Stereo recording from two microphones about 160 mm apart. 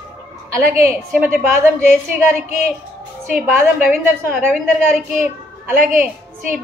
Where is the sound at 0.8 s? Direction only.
15° right (ahead or behind).